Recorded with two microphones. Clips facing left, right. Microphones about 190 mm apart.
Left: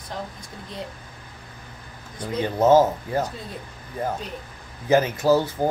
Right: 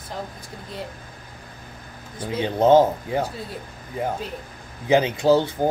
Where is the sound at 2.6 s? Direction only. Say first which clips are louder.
Right 1 dB; 5° left (ahead or behind).